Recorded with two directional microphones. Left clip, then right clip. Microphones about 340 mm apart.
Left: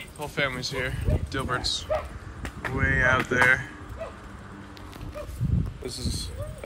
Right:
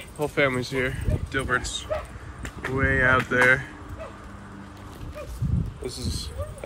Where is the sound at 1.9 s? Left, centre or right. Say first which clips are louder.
Left 1 dB; left.